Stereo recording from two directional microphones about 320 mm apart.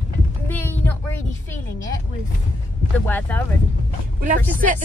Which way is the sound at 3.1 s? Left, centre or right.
Centre.